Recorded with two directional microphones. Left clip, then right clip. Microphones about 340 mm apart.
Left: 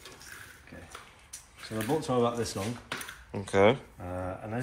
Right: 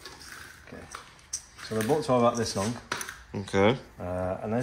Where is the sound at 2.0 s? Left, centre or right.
Centre.